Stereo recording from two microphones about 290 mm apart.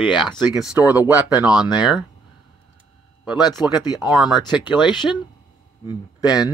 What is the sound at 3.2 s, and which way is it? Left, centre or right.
A man's voice, centre.